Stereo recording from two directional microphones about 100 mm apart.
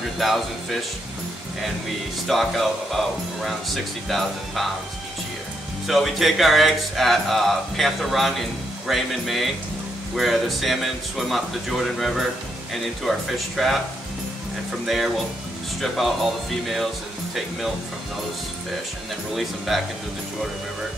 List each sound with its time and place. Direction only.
0.2 s speech: centre (ahead or behind)
2.2 s speech: centre (ahead or behind)
5.9 s speech: centre (ahead or behind)
13.6 s speech: centre (ahead or behind)
15.8 s speech: centre (ahead or behind)
19.3 s speech: centre (ahead or behind)